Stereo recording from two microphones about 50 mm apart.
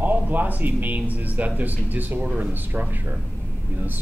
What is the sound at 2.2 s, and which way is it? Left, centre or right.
Speech, right.